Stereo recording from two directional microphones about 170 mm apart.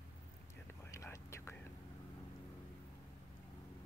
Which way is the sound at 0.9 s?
15° left (ahead or behind).